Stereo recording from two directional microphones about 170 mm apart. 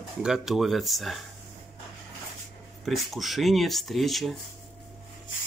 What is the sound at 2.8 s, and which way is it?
Speech, centre (ahead or behind).